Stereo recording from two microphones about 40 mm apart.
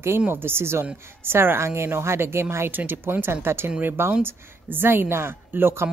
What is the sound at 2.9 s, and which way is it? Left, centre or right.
Speech, right.